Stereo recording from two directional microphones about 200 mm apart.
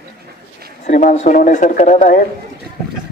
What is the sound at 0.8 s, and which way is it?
A man's voice, 35° left (ahead or behind).